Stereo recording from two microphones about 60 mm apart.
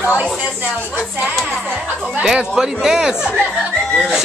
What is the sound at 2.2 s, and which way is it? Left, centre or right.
Speech, centre.